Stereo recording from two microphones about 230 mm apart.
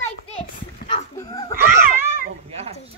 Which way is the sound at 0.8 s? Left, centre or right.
Centre.